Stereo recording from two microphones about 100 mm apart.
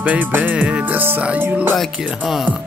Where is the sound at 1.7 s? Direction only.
Centre (ahead or behind).